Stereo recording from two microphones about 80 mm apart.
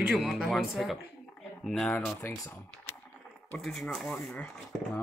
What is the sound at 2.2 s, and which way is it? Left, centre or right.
Speech, left.